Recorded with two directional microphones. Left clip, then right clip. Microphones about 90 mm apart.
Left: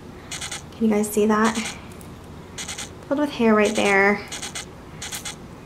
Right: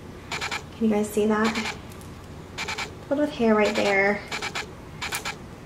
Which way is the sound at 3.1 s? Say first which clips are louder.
Left 3 dB; 40° left (ahead or behind).